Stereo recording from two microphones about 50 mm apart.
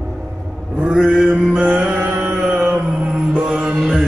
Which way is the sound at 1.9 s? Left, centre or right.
Right.